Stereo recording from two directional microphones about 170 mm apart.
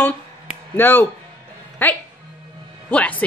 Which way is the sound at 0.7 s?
10° left (ahead or behind).